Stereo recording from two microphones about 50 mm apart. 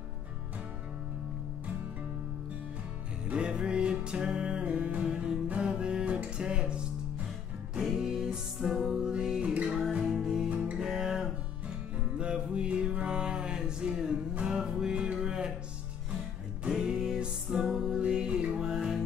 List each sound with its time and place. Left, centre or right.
3.3 s music: centre
8.0 s music: centre
9.4 s music: right
10.1 s music: centre
10.5 s music: right
10.8 s music: centre
12.2 s music: centre
16.6 s music: centre
18.6 s music: centre